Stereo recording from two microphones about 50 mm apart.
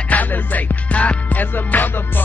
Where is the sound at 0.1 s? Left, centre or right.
Left.